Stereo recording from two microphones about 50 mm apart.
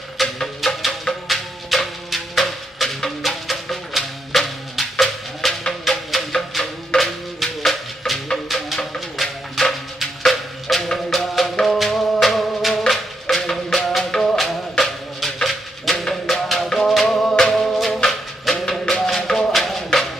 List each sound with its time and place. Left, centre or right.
0.2 s music: centre